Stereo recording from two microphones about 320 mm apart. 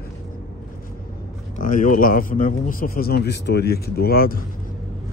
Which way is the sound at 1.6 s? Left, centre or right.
Left.